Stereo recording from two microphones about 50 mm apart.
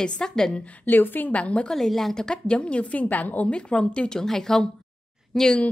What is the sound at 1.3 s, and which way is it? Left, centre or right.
Speech, left.